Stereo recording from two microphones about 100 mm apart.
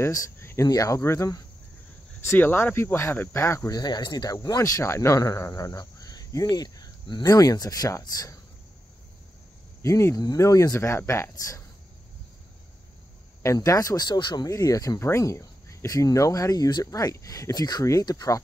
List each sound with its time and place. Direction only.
0.0 s speech: 30° left (ahead or behind)
9.8 s speech: 30° left (ahead or behind)
13.6 s speech: 35° left (ahead or behind)